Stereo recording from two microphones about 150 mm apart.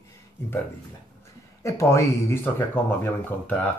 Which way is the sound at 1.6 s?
20° left (ahead or behind).